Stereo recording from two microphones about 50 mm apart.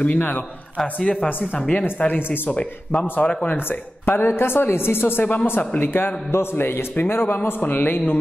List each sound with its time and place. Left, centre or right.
0.0 s speech: left
0.7 s speech: centre
1.7 s speech: left
2.5 s speech: left
4.0 s a man's voice: left
5.2 s a man's voice: left